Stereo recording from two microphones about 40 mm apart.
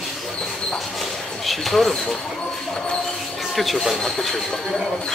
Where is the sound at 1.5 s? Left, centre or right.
Centre.